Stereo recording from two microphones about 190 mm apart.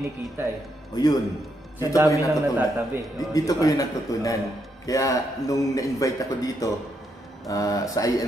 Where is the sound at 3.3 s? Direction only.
20° left (ahead or behind).